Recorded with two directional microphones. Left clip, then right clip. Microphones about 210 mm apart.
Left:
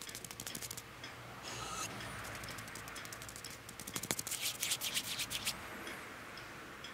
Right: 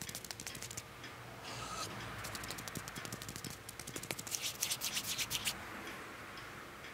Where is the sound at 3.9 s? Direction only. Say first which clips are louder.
Left 4 dB; 10° right (ahead or behind).